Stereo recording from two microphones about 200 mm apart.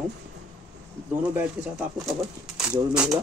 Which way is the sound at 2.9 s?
5° right (ahead or behind).